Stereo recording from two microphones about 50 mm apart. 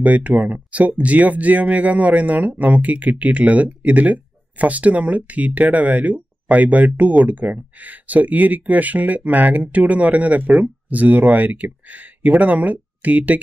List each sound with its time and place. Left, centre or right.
0.0 s speech: right